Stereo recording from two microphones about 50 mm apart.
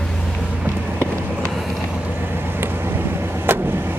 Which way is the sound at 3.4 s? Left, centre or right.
Right.